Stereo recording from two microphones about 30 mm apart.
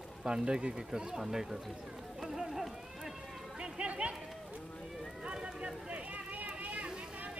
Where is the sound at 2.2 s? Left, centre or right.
Centre.